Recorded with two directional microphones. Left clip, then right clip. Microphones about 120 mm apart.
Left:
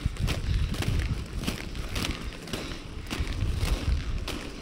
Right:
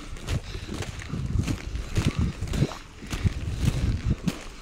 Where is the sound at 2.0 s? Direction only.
60° left (ahead or behind).